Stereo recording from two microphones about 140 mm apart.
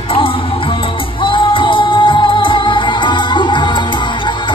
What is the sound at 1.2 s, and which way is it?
Music, 35° left (ahead or behind).